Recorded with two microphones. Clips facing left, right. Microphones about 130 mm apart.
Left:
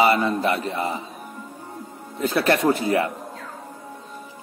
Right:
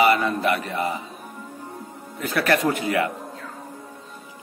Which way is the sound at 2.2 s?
30° left (ahead or behind).